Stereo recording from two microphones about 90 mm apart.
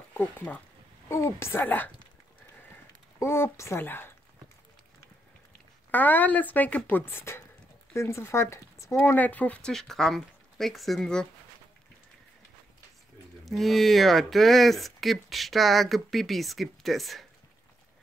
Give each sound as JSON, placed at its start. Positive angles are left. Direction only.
{"t": 0.1, "sound": "speech", "side_deg": 25}
{"t": 3.2, "sound": "speech", "side_deg": 30}
{"t": 5.9, "sound": "speech", "side_deg": 20}
{"t": 13.5, "sound": "speech", "side_deg": 0}